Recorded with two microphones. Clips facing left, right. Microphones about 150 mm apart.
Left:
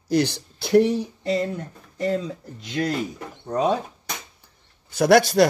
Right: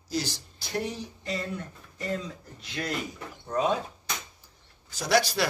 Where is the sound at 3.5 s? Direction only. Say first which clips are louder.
Left 5 dB; 35° left (ahead or behind).